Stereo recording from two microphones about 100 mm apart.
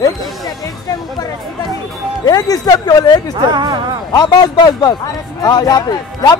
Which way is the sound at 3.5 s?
45° right (ahead or behind).